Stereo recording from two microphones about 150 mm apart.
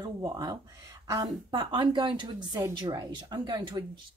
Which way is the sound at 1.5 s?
35° right (ahead or behind).